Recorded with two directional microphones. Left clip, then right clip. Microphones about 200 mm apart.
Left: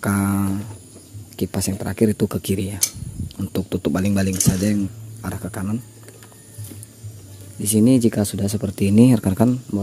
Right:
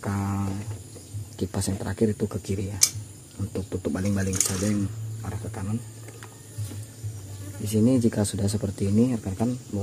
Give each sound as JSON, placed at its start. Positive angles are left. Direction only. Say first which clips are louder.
{"t": 0.0, "sound": "a sound", "louder": "left 9 dB", "side_deg": 55}
{"t": 1.3, "sound": "speech", "louder": "left 5 dB", "side_deg": 30}
{"t": 5.2, "sound": "speech", "louder": "left 8 dB", "side_deg": 60}
{"t": 7.7, "sound": "speech", "louder": "left 6 dB", "side_deg": 45}
{"t": 8.9, "sound": "speech", "louder": "left 10 dB", "side_deg": 55}